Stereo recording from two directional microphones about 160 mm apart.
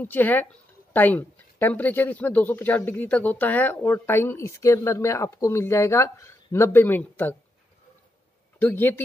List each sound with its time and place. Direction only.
0.0 s a woman's voice: 10° left (ahead or behind)
8.5 s a woman's voice: 10° left (ahead or behind)